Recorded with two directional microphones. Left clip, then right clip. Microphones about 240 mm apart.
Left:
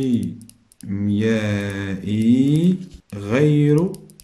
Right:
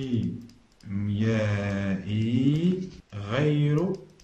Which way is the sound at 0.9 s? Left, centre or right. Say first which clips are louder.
Left 8 dB; left.